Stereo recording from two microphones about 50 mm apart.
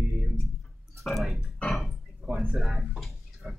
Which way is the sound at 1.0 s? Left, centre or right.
Centre.